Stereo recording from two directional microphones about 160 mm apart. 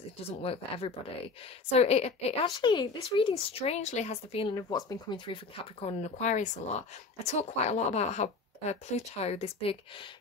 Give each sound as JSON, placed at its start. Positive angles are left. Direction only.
{"t": 0.2, "sound": "speech", "side_deg": 35}
{"t": 2.5, "sound": "speech", "side_deg": 25}
{"t": 4.6, "sound": "speech", "side_deg": 25}